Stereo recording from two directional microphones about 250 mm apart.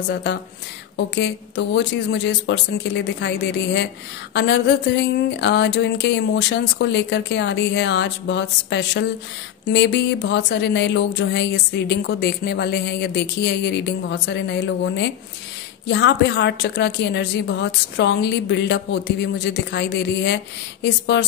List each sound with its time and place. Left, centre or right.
0.1 s speech: left